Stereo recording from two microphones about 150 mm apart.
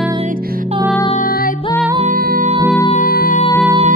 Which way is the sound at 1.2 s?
70° left (ahead or behind).